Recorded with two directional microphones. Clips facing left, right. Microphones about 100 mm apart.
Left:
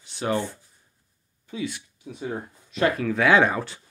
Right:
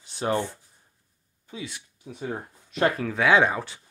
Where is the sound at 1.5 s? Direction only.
30° right (ahead or behind).